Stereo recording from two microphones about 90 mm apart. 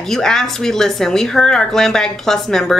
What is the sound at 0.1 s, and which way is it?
Speech, 5° left (ahead or behind).